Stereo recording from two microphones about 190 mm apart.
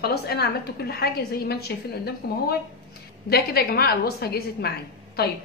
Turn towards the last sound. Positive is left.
turn(degrees=55)  # may be behind; listen again after turning